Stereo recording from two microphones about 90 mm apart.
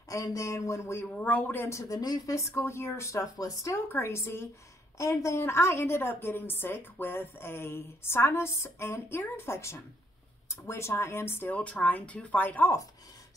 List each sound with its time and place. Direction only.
0.1 s a woman's voice: 40° left (ahead or behind)
1.0 s a woman's voice: 15° left (ahead or behind); by 3.7 s 40° left (ahead or behind)
3.7 s a woman's voice: 30° left (ahead or behind)